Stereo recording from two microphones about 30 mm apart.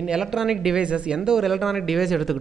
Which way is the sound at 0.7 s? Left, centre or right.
Right.